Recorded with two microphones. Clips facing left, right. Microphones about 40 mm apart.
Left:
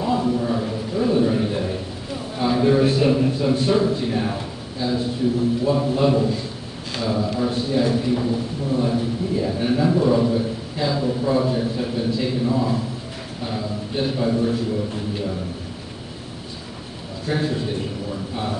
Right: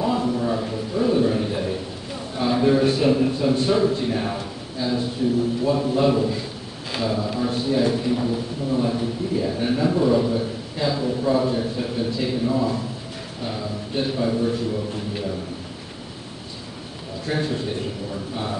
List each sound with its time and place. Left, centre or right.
0.0 s a sound: centre
2.3 s a man's voice: centre
17.3 s a man's voice: centre